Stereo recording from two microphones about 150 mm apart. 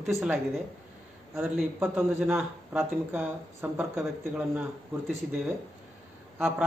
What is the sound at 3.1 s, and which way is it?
Speech, 15° right (ahead or behind).